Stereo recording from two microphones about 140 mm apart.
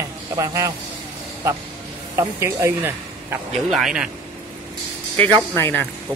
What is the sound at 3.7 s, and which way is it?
Speech, centre (ahead or behind).